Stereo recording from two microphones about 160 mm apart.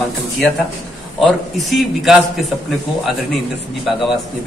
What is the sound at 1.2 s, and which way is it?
Speech, centre (ahead or behind).